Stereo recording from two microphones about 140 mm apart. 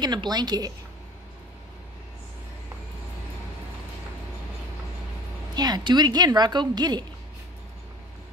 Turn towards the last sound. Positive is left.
turn(degrees=-30)  # may be behind; listen again after turning